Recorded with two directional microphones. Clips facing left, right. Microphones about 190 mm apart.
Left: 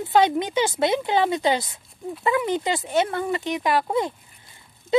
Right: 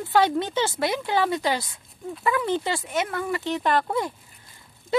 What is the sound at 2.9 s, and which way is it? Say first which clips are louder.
Speech: left 6 dB; 30° left (ahead or behind).